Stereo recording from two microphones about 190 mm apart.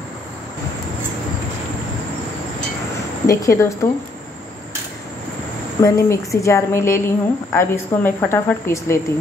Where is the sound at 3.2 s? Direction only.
15° left (ahead or behind).